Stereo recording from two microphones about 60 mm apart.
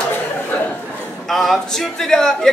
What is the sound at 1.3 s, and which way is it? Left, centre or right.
Speech, centre.